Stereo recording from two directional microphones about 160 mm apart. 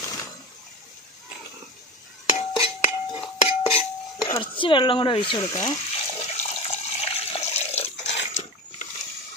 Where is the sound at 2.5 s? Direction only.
35° left (ahead or behind).